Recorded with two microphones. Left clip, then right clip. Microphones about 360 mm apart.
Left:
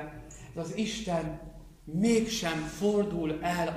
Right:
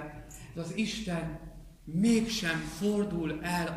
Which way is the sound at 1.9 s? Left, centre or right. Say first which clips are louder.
Left 2 dB; centre.